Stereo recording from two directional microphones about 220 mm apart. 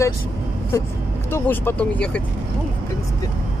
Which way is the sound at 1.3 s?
10° left (ahead or behind).